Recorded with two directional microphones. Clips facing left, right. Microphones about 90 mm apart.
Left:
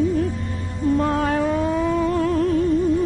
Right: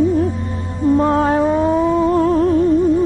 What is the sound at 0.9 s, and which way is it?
Music, 30° right (ahead or behind).